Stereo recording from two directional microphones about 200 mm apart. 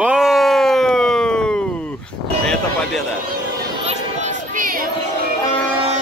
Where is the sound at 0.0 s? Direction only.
5° right (ahead or behind).